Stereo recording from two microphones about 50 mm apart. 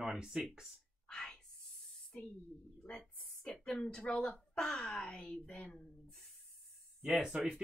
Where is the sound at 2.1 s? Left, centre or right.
Centre.